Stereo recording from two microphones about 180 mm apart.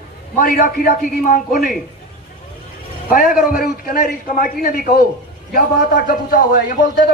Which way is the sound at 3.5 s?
50° left (ahead or behind).